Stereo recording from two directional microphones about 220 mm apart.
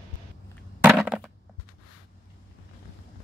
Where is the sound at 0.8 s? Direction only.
5° right (ahead or behind).